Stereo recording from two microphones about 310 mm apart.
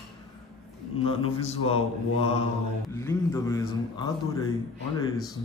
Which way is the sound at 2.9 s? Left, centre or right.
Centre.